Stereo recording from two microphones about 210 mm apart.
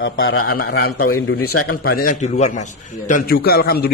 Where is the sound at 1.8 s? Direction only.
45° left (ahead or behind).